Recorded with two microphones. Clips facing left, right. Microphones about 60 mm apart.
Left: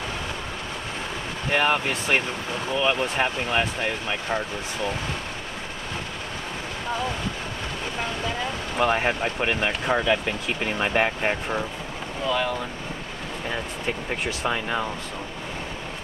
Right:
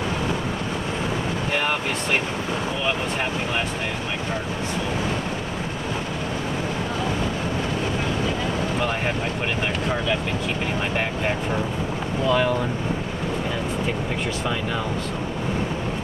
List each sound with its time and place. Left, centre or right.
1.6 s speech: centre
9.8 s speech: centre
12.3 s speech: centre